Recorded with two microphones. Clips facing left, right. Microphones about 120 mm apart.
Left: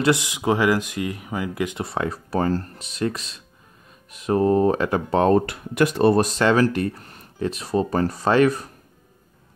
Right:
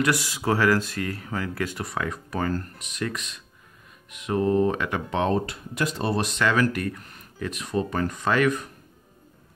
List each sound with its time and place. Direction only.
0.0 s speech: 20° left (ahead or behind)
1.9 s speech: 30° left (ahead or behind)
5.3 s speech: 60° left (ahead or behind)
6.2 s speech: 35° left (ahead or behind)